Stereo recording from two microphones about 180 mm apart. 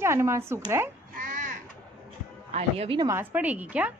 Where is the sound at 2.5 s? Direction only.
35° right (ahead or behind).